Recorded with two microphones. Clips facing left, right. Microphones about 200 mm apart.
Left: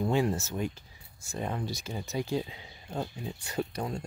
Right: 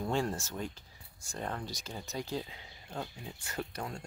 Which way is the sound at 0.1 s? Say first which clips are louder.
Left 5 dB; 5° left (ahead or behind).